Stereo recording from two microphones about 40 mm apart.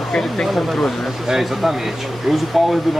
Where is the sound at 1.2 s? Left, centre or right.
Centre.